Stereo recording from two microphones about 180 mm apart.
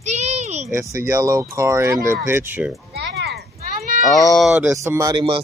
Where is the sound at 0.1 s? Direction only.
35° right (ahead or behind).